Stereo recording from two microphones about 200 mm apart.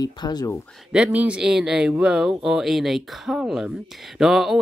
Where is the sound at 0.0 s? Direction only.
20° left (ahead or behind).